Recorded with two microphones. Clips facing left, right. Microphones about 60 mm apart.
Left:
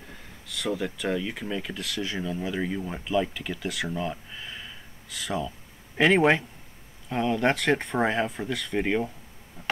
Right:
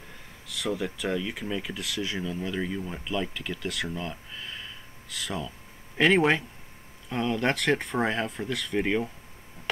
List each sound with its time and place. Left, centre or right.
0.5 s speech: centre